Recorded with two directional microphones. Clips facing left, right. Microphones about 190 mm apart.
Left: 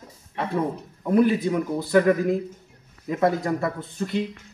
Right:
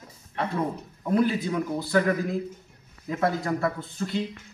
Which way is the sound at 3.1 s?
20° left (ahead or behind).